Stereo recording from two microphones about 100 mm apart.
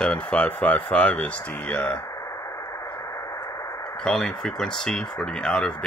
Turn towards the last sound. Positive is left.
turn(degrees=10)  # may be behind; listen again after turning